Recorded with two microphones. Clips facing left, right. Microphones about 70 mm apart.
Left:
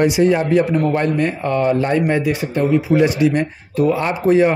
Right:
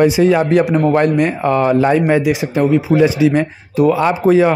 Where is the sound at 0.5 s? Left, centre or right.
Right.